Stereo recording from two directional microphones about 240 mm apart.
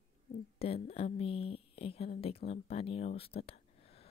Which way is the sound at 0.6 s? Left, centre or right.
Left.